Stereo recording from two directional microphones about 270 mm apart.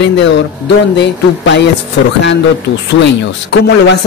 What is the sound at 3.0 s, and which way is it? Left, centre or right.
Speech, left.